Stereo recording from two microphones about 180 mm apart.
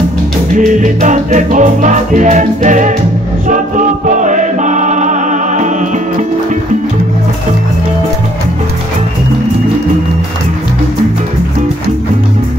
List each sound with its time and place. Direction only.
0.6 s music: 45° right (ahead or behind)